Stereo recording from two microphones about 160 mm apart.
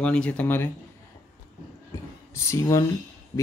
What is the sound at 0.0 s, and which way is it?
Speech, 5° left (ahead or behind).